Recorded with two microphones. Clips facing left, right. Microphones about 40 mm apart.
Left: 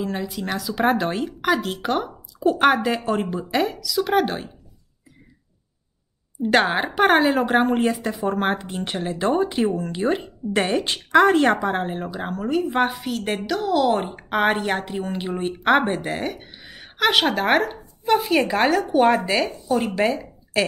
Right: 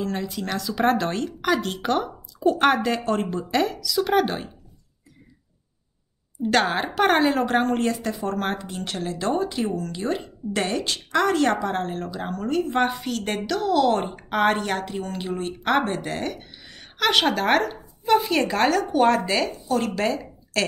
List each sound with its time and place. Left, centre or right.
0.0 s speech: centre
6.4 s a woman's voice: centre